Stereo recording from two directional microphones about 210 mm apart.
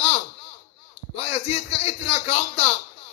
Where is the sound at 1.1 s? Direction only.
30° left (ahead or behind).